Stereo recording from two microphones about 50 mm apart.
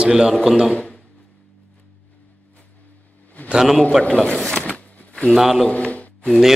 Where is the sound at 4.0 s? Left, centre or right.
Centre.